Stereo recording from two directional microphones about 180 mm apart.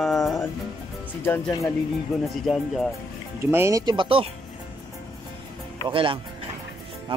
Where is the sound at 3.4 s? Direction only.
15° right (ahead or behind).